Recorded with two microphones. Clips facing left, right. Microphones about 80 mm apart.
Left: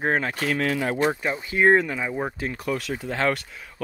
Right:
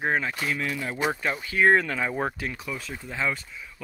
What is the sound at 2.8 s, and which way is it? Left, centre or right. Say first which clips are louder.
Speech: left 2 dB; left.